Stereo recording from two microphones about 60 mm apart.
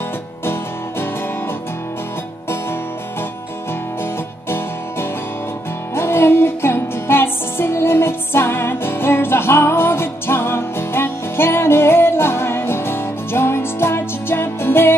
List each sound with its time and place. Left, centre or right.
5.9 s music: left